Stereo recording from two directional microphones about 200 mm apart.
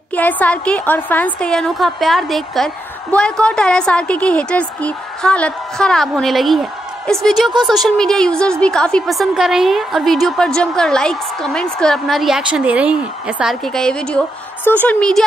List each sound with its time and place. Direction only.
0.1 s a woman's voice: 10° left (ahead or behind)